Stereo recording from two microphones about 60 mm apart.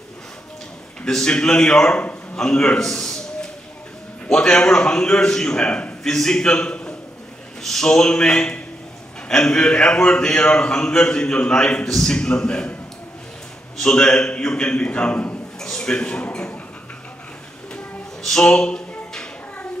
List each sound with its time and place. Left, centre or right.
1.0 s a man's voice: centre
6.0 s a man's voice: centre
13.7 s a man's voice: centre
18.2 s a sound: centre